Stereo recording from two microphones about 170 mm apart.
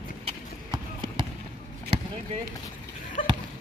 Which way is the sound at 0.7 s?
30° right (ahead or behind).